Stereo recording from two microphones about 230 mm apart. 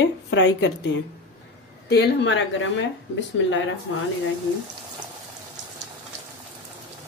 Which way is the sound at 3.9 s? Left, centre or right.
Left.